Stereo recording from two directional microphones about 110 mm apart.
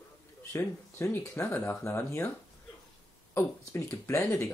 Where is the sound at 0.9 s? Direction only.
20° left (ahead or behind).